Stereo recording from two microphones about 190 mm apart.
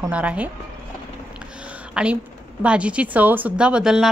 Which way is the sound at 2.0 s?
5° right (ahead or behind).